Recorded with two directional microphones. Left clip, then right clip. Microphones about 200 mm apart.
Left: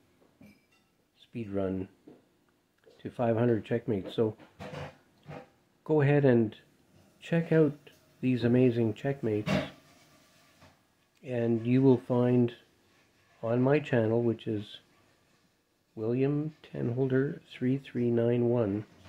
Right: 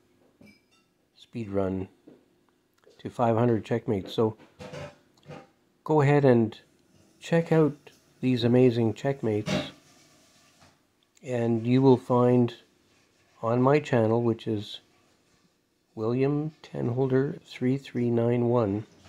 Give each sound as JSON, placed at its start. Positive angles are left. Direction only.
{"t": 1.1, "sound": "speech", "side_deg": -25}
{"t": 3.0, "sound": "speech", "side_deg": -25}
{"t": 5.9, "sound": "speech", "side_deg": -25}
{"t": 11.1, "sound": "speech", "side_deg": -25}
{"t": 16.0, "sound": "speech", "side_deg": -25}